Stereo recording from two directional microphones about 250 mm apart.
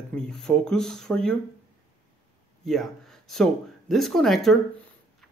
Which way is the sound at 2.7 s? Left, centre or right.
Centre.